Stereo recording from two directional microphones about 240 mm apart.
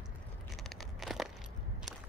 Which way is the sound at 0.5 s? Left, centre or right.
Centre.